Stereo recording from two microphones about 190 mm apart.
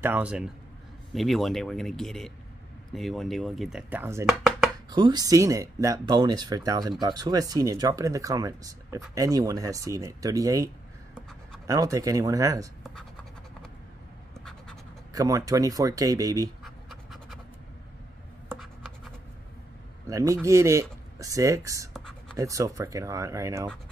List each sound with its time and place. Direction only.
0.0 s speech: 10° right (ahead or behind)
1.1 s chopping: centre (ahead or behind)
4.3 s a sound: centre (ahead or behind)
4.8 s speech: 20° right (ahead or behind)
11.1 s writing: centre (ahead or behind)
11.6 s speech: 20° right (ahead or behind)
15.1 s speech: 20° right (ahead or behind)
16.6 s scratch: centre (ahead or behind)
20.1 s speech: 15° right (ahead or behind)
21.9 s whispering: centre (ahead or behind)
22.4 s speech: 15° right (ahead or behind)